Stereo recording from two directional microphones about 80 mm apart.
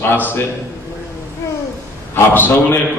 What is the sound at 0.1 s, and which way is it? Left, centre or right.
Speech, left.